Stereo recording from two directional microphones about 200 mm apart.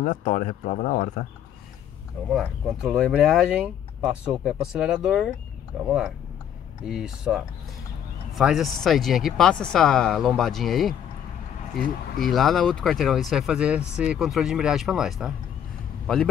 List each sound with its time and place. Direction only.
0.0 s speech: 40° left (ahead or behind)
2.3 s speech: centre (ahead or behind)